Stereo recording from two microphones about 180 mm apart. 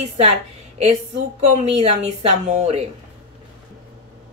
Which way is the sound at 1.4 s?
35° right (ahead or behind).